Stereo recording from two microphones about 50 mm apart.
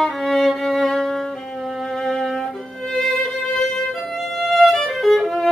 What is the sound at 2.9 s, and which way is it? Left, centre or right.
Music, centre.